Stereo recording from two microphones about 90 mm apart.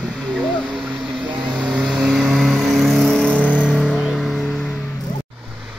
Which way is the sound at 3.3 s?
15° left (ahead or behind).